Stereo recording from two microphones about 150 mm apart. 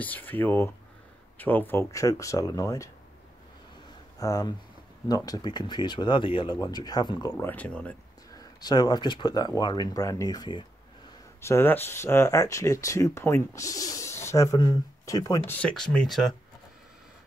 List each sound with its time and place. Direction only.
0.0 s speech: 10° left (ahead or behind)
4.2 s speech: 25° left (ahead or behind)
7.3 s speech: 10° left (ahead or behind)
8.4 s speech: 25° left (ahead or behind)
11.4 s speech: 15° left (ahead or behind)
15.5 s speech: 5° left (ahead or behind)